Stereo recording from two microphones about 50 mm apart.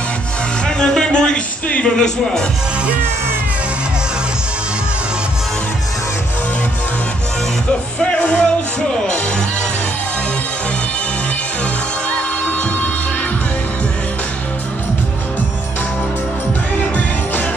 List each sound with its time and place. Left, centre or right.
0.7 s music: centre
1.7 s speech: left
8.0 s speech: left